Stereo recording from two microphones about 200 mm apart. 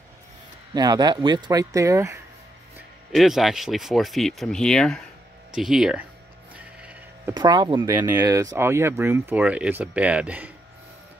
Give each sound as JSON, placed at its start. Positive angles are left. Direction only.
{"t": 0.7, "sound": "speech", "side_deg": -20}
{"t": 3.1, "sound": "speech", "side_deg": 0}
{"t": 6.5, "sound": "sheep", "side_deg": -5}
{"t": 7.3, "sound": "speech", "side_deg": -20}